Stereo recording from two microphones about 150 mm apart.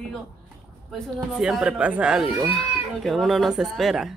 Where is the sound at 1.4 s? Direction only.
5° right (ahead or behind).